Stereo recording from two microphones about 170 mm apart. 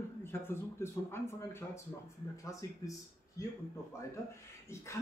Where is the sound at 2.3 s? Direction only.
20° left (ahead or behind).